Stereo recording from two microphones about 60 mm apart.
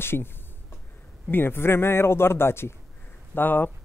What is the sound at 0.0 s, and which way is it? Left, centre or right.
Speech, left.